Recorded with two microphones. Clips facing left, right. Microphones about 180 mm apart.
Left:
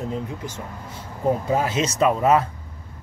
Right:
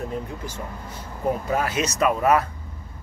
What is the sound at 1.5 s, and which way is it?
Speech, 25° left (ahead or behind).